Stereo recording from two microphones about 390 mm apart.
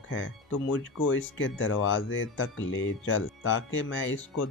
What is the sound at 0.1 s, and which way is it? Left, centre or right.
Speech, left.